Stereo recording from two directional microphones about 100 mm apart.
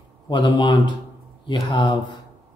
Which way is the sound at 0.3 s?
50° left (ahead or behind).